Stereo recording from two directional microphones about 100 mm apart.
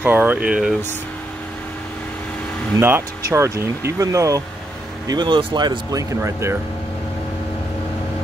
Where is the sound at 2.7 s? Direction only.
20° right (ahead or behind).